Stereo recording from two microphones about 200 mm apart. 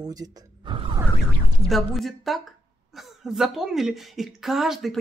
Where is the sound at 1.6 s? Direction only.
Centre (ahead or behind).